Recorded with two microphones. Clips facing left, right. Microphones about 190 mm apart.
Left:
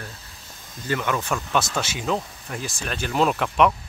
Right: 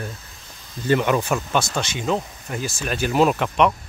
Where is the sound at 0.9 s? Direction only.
25° right (ahead or behind).